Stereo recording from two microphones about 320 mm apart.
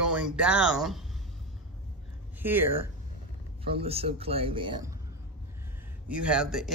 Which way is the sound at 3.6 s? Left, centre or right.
Centre.